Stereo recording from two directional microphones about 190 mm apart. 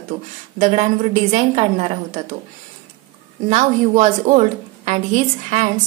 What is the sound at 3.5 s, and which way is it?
A woman's voice, 40° right (ahead or behind).